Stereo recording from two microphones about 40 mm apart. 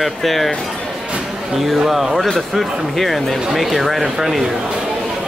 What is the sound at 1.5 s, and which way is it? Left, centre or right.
Speech, centre.